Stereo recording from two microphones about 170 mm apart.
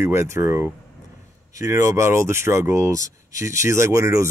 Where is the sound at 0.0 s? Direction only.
15° right (ahead or behind).